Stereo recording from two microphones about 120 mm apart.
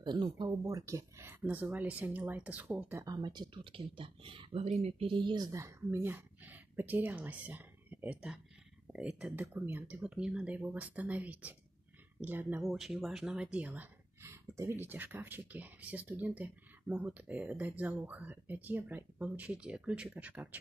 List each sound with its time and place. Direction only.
0.0 s speech: 35° right (ahead or behind); by 3.1 s 15° right (ahead or behind)
3.1 s speech: 35° right (ahead or behind); by 5.1 s 60° right (ahead or behind)
5.1 s speech: 40° right (ahead or behind); by 12.6 s 15° right (ahead or behind)
12.6 s speech: centre (ahead or behind)
14.2 s speech: 25° right (ahead or behind)